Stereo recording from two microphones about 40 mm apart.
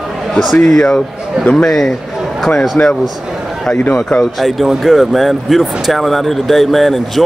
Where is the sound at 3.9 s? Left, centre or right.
Left.